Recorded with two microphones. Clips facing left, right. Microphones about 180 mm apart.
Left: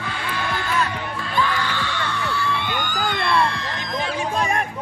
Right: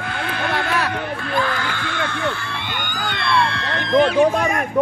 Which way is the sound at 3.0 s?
65° right (ahead or behind).